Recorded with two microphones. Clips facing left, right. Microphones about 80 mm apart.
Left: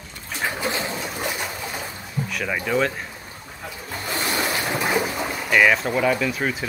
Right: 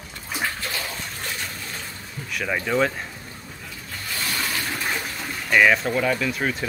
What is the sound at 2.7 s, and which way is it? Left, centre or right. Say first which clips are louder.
Speech: even; centre.